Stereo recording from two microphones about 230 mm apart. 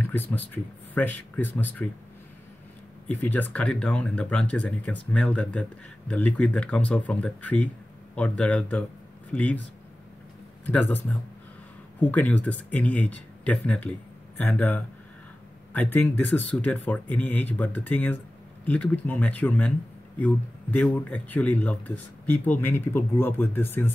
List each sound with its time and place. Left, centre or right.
0.0 s speech: centre
3.1 s speech: centre
10.6 s speech: centre